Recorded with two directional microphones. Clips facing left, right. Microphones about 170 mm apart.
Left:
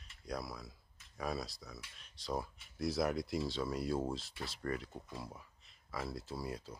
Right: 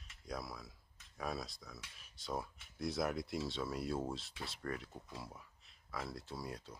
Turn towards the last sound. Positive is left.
turn(degrees=0)  # may be behind; listen again after turning